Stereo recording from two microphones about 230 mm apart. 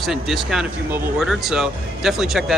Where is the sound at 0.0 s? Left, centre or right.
Centre.